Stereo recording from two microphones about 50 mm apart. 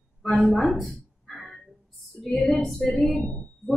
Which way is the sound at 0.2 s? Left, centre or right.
Centre.